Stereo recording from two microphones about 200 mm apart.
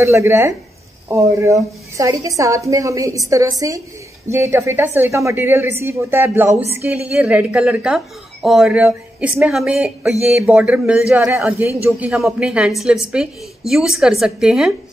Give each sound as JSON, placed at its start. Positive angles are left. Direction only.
{"t": 0.0, "sound": "a woman's voice", "side_deg": -10}